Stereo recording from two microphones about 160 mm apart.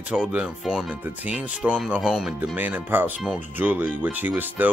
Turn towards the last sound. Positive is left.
turn(degrees=-10)  # may be behind; listen again after turning